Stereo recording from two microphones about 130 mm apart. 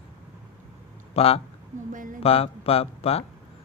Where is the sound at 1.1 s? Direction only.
50° left (ahead or behind).